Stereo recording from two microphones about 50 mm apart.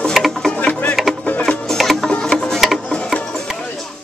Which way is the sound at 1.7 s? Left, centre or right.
Centre.